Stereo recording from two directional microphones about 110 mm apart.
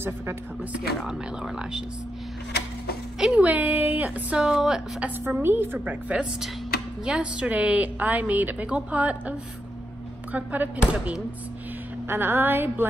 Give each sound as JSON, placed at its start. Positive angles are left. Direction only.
{"t": 0.7, "sound": "a woman's voice", "side_deg": -5}
{"t": 3.2, "sound": "a woman's voice", "side_deg": -10}
{"t": 5.2, "sound": "a woman's voice", "side_deg": -20}
{"t": 10.3, "sound": "a woman's voice", "side_deg": -15}